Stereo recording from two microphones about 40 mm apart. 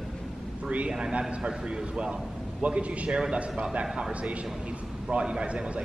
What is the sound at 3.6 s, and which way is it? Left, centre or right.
Speech, right.